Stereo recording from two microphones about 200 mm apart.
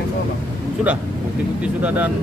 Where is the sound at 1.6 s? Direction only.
5° right (ahead or behind).